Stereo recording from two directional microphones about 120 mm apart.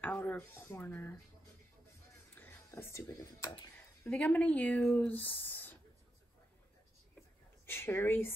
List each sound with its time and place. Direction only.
0.0 s speech: 15° left (ahead or behind)
2.3 s a sound: 20° left (ahead or behind)
4.1 s speech: 10° left (ahead or behind)
7.6 s speech: 20° left (ahead or behind)